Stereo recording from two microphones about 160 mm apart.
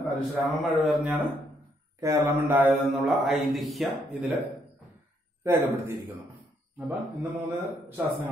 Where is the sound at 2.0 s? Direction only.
20° right (ahead or behind).